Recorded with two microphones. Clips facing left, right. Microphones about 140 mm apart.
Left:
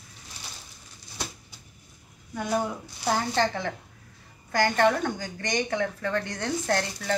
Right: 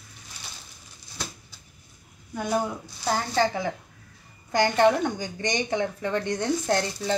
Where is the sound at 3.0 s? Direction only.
Centre (ahead or behind).